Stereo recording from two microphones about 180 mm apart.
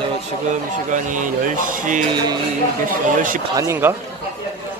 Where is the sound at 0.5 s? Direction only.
45° right (ahead or behind).